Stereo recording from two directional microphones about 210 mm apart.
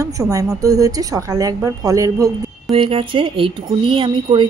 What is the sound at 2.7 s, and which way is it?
Speech, 25° right (ahead or behind).